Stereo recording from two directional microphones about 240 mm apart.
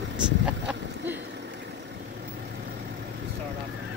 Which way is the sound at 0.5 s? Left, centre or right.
Centre.